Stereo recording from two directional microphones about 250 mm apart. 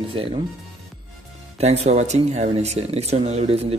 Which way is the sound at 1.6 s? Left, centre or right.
Right.